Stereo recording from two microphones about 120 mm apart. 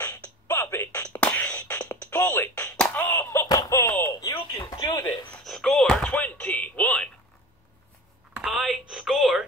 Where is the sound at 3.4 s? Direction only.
30° left (ahead or behind).